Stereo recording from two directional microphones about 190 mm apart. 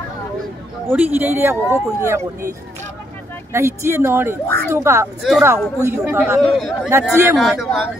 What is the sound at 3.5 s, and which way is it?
Speech, 15° right (ahead or behind).